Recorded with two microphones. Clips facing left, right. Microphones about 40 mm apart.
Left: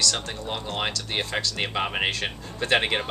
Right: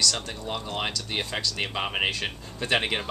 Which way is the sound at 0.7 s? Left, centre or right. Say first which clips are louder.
Left 3 dB; centre.